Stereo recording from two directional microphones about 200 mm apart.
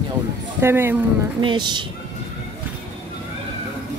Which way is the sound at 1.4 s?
25° right (ahead or behind).